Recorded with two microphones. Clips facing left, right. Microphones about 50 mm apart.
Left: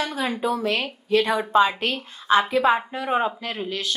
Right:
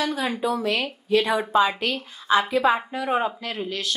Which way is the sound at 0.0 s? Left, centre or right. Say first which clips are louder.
Even; left.